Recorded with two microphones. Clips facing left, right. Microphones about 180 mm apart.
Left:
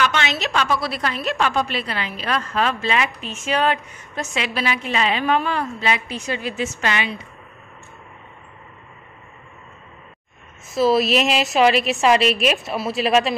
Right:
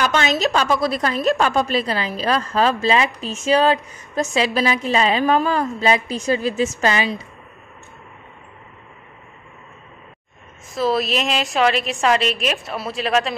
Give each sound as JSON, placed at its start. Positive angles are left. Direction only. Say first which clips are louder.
{"t": 0.0, "sound": "a woman's voice", "louder": "right 3 dB", "side_deg": -40}
{"t": 10.7, "sound": "a woman's voice", "louder": "left 3 dB", "side_deg": 5}